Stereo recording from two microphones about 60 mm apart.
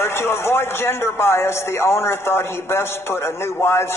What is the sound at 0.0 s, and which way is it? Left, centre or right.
A man's voice, left.